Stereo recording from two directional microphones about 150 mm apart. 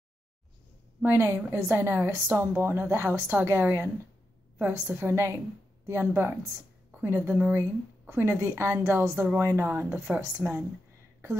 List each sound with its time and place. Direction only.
1.0 s a woman's voice: 20° right (ahead or behind)